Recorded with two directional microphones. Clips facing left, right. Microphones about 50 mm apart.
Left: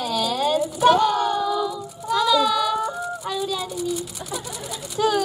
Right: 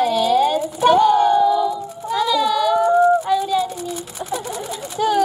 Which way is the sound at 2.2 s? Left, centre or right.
Centre.